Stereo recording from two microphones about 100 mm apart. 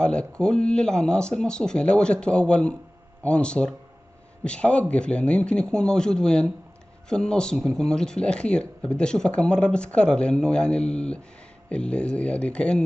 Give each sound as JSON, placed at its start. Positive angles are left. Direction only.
{"t": 0.0, "sound": "speech", "side_deg": 10}